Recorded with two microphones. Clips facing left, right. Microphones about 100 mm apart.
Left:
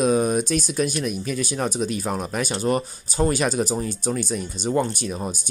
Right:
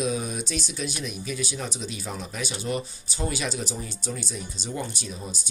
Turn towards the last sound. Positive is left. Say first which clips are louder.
# left 8 dB
turn(degrees=55)  # may be behind; listen again after turning